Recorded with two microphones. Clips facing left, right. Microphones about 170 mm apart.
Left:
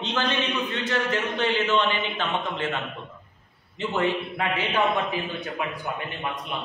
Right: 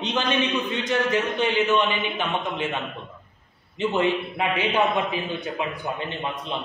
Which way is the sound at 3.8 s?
20° right (ahead or behind).